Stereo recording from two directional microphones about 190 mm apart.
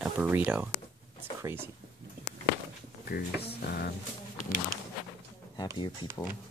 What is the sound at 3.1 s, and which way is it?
Speech, 55° left (ahead or behind).